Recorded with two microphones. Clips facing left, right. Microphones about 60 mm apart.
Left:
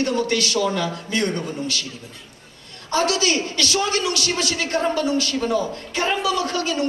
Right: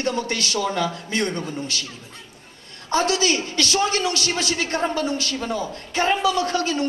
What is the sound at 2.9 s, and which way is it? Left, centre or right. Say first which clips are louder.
A woman's voice: even; right.